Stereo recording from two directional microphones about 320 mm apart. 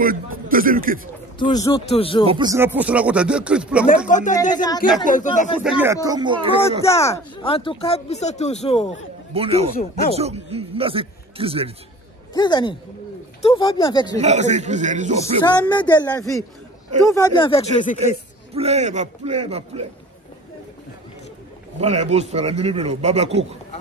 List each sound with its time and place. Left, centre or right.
0.0 s speech: right
1.4 s speech: centre
2.2 s speech: centre
4.1 s speech: left
5.6 s a man's voice: centre
6.8 s speech: centre
9.3 s a man's voice: centre
12.4 s speech: centre
14.2 s a man's voice: right
15.4 s speech: centre
17.9 s a man's voice: centre
21.7 s a man's voice: centre